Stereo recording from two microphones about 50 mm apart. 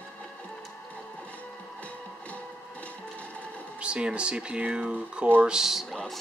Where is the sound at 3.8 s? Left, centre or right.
Right.